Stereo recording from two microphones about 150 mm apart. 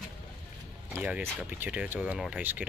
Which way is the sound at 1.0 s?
10° right (ahead or behind).